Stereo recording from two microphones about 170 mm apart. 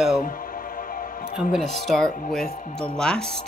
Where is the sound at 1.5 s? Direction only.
Centre (ahead or behind).